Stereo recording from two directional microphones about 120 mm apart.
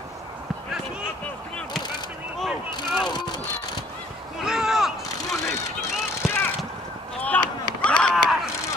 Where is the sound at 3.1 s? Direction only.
35° left (ahead or behind).